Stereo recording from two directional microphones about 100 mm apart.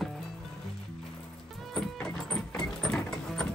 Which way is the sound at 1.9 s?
5° left (ahead or behind).